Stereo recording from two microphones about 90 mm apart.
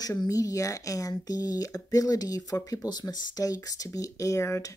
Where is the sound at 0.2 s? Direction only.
40° left (ahead or behind).